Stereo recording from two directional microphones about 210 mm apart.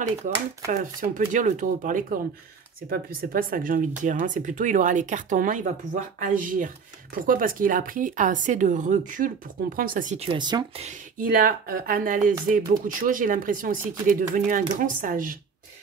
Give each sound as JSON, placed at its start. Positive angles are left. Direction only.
{"t": 0.7, "sound": "speech", "side_deg": -40}
{"t": 11.1, "sound": "speech", "side_deg": -40}